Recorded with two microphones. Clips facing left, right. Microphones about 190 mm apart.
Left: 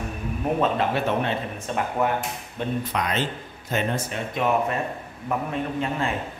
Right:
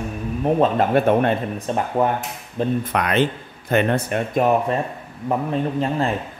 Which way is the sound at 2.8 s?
60° right (ahead or behind).